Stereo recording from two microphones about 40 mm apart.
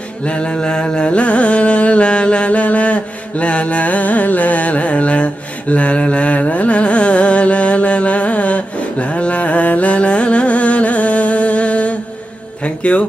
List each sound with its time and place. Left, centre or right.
0.2 s music: left